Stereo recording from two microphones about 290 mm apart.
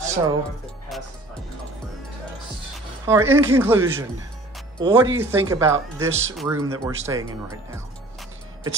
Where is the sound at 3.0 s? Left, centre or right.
Centre.